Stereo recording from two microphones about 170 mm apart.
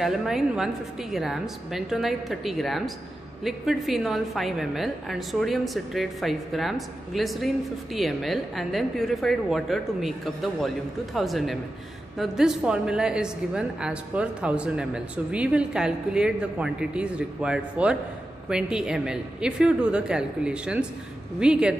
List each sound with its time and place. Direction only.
0.0 s a woman's voice: 5° right (ahead or behind)